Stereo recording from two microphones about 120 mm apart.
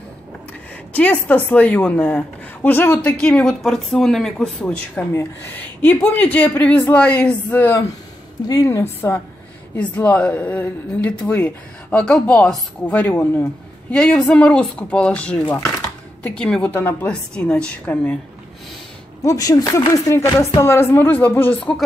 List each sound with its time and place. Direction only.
0.9 s a woman's voice: 10° left (ahead or behind)
4.9 s a woman's voice: 15° left (ahead or behind)
9.8 s a woman's voice: 10° left (ahead or behind)
13.9 s a woman's voice: 10° left (ahead or behind)
19.2 s speech: 30° left (ahead or behind); by 21.7 s 15° left (ahead or behind)